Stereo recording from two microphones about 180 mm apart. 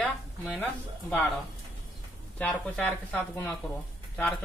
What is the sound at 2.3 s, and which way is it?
Speech, 5° left (ahead or behind).